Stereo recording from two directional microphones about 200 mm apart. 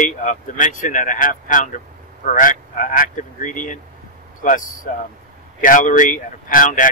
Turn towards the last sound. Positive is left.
turn(degrees=40)  # may be behind; listen again after turning